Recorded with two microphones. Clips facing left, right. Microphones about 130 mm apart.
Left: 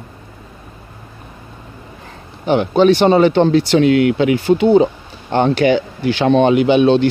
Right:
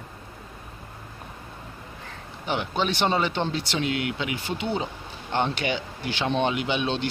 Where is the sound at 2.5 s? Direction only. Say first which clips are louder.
Left 15 dB; 55° left (ahead or behind).